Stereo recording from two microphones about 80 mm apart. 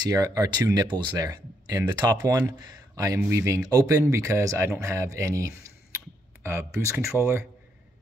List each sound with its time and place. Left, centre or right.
0.1 s speech: right
3.2 s speech: right
4.0 s speech: right